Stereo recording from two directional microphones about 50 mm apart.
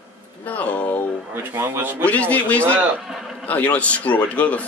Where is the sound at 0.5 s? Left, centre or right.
Left.